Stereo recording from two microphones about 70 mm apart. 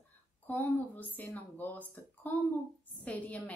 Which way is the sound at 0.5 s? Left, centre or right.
Left.